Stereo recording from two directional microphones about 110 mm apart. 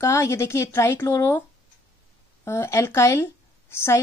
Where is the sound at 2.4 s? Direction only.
25° left (ahead or behind).